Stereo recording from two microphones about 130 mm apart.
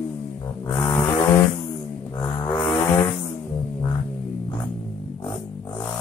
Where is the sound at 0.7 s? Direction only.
20° left (ahead or behind).